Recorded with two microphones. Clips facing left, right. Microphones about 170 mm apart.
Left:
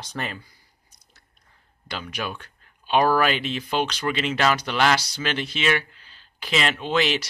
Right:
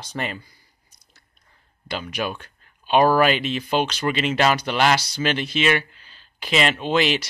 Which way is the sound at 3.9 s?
25° right (ahead or behind).